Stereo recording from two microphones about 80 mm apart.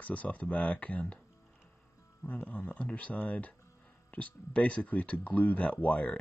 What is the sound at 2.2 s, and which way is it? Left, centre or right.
Speech, centre.